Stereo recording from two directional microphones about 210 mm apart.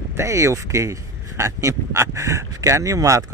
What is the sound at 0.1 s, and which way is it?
Speech, 15° right (ahead or behind).